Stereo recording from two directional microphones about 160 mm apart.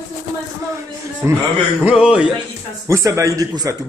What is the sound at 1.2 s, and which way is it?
Speech, 15° right (ahead or behind).